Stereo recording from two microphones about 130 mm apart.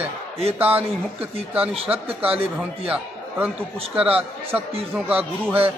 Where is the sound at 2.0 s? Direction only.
50° right (ahead or behind).